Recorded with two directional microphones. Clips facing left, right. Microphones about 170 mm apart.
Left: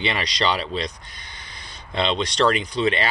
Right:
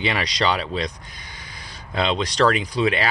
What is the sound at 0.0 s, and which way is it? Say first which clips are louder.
Speech: right 1 dB; 5° right (ahead or behind).